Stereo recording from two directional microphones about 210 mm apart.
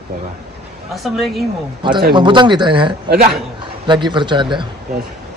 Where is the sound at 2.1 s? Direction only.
20° right (ahead or behind).